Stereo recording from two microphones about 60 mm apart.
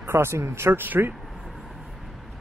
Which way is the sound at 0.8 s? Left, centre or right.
Right.